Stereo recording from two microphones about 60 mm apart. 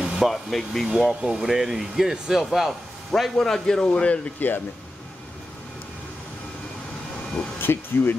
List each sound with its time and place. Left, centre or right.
0.0 s a sound: centre
0.3 s speech: centre
3.1 s speech: centre
7.6 s speech: left